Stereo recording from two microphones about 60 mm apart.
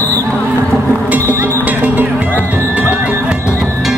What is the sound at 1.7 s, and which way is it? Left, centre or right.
Music, right.